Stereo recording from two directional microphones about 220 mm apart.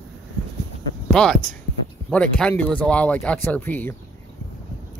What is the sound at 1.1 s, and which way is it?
Speech, 5° left (ahead or behind).